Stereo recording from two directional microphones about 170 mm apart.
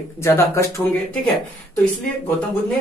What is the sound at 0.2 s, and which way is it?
Speech, 15° left (ahead or behind).